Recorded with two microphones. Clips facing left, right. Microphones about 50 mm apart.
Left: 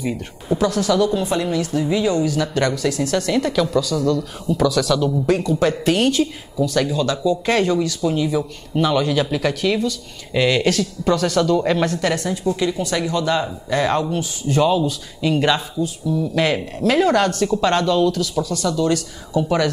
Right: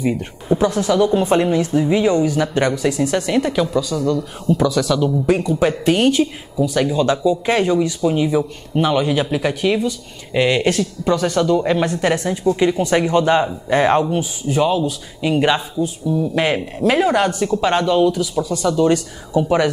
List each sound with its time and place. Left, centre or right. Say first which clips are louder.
0.5 s speech: right 2 dB; right
14.5 s speech: even; centre
15.2 s speech: right 2 dB; centre